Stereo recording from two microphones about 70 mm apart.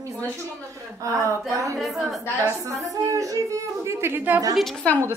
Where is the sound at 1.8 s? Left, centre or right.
Centre.